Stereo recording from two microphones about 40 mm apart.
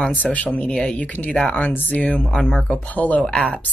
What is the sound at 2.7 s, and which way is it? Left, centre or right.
Speech, left.